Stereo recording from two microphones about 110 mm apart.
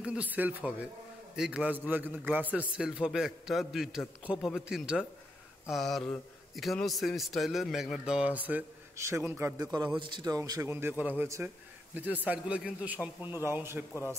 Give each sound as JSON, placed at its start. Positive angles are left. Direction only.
{"t": 0.0, "sound": "a man's voice", "side_deg": -10}
{"t": 8.9, "sound": "a man's voice", "side_deg": -25}
{"t": 9.6, "sound": "a man's voice", "side_deg": -35}
{"t": 9.9, "sound": "a man's voice", "side_deg": -45}
{"t": 10.7, "sound": "a man's voice", "side_deg": -20}
{"t": 11.2, "sound": "a man's voice", "side_deg": -25}
{"t": 11.9, "sound": "a man's voice", "side_deg": -15}